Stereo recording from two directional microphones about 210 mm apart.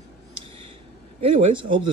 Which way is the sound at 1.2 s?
25° right (ahead or behind).